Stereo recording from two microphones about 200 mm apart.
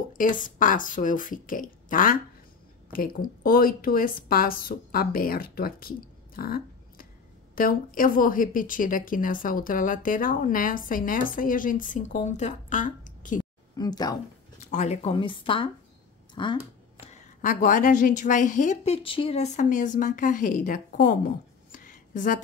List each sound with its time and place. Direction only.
0.1 s a woman's voice: 40° left (ahead or behind)
13.7 s speech: 20° left (ahead or behind)
14.6 s speech: 35° left (ahead or behind)
17.0 s a woman's voice: 35° left (ahead or behind)
21.7 s a sound: 40° left (ahead or behind)